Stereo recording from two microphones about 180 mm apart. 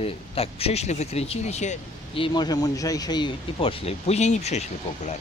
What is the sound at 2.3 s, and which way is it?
Speech, 20° left (ahead or behind).